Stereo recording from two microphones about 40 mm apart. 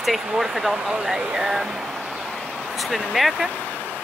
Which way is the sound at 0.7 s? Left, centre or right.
Right.